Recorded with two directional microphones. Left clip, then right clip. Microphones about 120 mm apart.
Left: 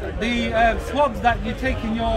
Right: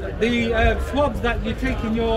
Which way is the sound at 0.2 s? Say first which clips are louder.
Even; 40° left (ahead or behind).